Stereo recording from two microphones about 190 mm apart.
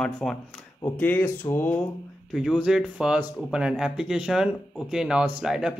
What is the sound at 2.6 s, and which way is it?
Speech, 5° right (ahead or behind).